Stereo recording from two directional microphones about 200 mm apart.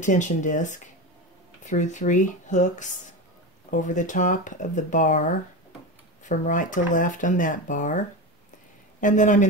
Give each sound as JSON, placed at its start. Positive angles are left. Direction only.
{"t": 0.0, "sound": "speech", "side_deg": 40}
{"t": 9.0, "sound": "speech", "side_deg": 40}